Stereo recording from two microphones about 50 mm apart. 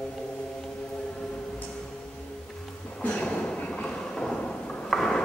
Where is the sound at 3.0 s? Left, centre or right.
Left.